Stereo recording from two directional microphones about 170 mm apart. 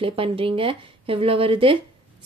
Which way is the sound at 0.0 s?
30° right (ahead or behind).